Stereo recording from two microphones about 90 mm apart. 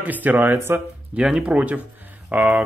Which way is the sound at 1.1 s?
10° right (ahead or behind).